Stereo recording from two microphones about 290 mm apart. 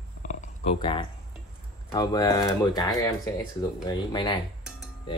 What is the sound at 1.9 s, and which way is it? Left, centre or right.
Speech, centre.